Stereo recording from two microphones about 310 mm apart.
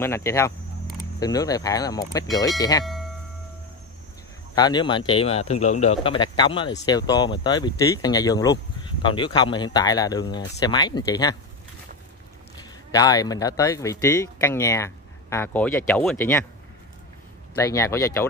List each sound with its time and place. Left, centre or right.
0.0 s speech: centre
2.8 s a sound: centre
4.6 s speech: centre
12.5 s speech: centre
17.6 s speech: centre